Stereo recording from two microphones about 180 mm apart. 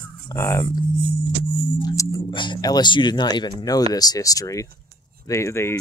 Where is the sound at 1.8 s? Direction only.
20° left (ahead or behind).